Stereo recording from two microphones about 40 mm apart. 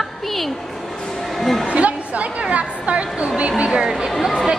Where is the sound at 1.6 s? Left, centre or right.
Right.